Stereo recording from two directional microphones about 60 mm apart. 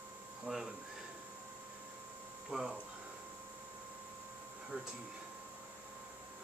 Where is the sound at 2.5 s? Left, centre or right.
Centre.